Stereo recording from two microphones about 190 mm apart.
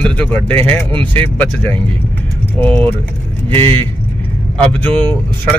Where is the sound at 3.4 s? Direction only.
30° right (ahead or behind).